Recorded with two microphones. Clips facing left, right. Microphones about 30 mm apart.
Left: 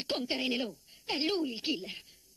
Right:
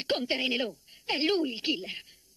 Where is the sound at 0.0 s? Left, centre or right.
Right.